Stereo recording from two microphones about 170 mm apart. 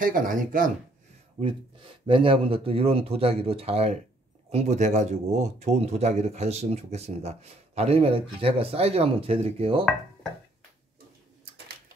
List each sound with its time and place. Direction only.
0.0 s speech: 55° right (ahead or behind)
1.4 s speech: 30° right (ahead or behind)